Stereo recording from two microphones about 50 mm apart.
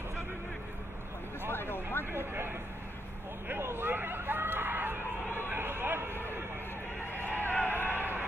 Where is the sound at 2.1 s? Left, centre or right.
Right.